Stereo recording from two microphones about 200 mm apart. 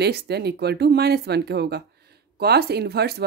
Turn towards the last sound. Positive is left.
turn(degrees=-55)  # may be behind; listen again after turning